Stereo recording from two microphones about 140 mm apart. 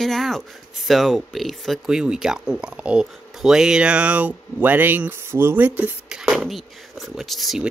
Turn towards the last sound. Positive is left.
turn(degrees=0)  # may be behind; listen again after turning